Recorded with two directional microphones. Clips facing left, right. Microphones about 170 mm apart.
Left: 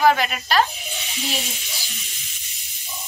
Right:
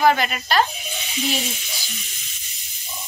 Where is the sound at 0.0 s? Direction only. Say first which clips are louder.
Even; centre (ahead or behind).